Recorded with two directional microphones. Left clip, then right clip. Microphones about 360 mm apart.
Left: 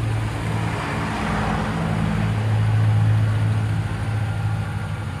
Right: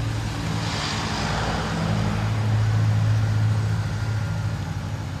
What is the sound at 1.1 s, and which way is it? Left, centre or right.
Vehicle, centre.